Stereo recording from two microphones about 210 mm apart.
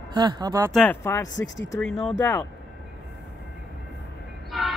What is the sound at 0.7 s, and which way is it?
Speech, 5° left (ahead or behind).